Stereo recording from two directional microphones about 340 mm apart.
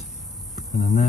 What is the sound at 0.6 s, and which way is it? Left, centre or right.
Insect, centre.